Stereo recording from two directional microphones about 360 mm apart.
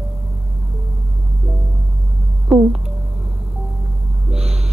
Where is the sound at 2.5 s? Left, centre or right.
Centre.